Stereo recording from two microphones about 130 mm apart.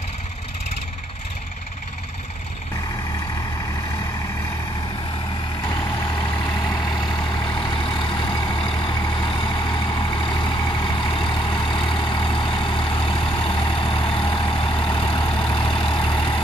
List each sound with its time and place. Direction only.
5.9 s vehicle: 30° left (ahead or behind)